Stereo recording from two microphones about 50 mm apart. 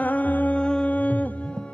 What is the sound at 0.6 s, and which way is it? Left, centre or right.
Music, left.